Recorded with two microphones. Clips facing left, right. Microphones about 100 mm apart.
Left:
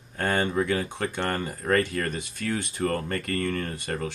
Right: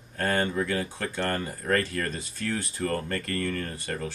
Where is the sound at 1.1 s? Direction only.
20° left (ahead or behind).